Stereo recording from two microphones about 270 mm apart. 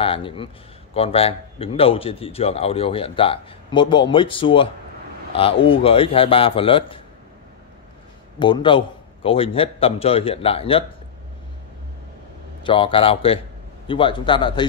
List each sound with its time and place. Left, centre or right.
0.0 s a man's voice: centre
8.4 s a man's voice: centre
12.6 s a man's voice: centre